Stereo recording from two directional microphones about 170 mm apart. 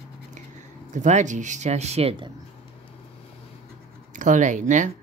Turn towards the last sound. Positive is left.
turn(degrees=-50)  # may be behind; listen again after turning